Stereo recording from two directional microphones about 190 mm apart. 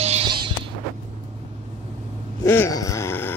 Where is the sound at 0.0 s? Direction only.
30° right (ahead or behind).